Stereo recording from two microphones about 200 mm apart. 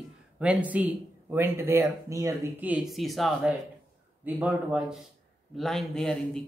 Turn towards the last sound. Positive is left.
turn(degrees=5)  # may be behind; listen again after turning